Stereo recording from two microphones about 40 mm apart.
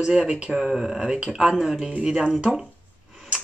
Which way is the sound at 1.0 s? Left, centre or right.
Right.